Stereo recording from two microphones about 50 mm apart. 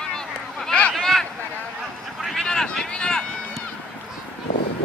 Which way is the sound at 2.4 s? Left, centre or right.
Centre.